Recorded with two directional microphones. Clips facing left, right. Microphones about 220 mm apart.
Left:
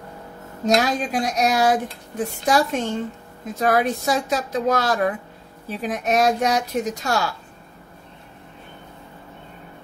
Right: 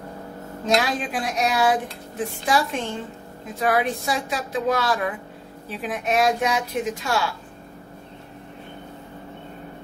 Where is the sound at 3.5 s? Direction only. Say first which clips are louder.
Left 2 dB; 40° left (ahead or behind).